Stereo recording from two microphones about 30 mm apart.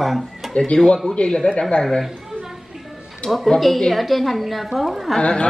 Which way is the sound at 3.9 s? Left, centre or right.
Centre.